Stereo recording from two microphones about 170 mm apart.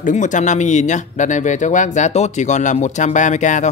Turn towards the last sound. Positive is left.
turn(degrees=45)  # may be behind; listen again after turning